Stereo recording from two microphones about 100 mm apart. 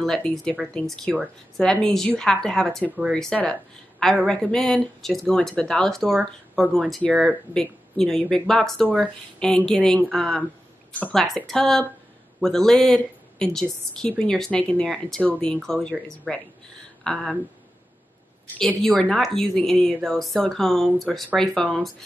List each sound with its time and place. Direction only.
0.0 s speech: 5° left (ahead or behind)
10.9 s speech: 15° left (ahead or behind)
11.1 s speech: centre (ahead or behind)
18.6 s speech: 5° left (ahead or behind)